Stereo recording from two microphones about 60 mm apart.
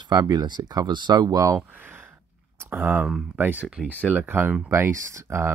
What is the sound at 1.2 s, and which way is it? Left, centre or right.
Speech, right.